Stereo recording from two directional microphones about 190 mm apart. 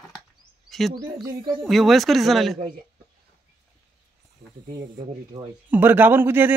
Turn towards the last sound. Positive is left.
turn(degrees=-10)  # may be behind; listen again after turning